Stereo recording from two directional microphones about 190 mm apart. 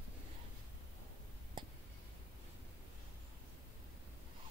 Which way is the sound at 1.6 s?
25° right (ahead or behind).